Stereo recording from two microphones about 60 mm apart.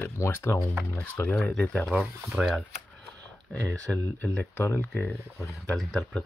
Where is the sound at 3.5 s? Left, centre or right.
Left.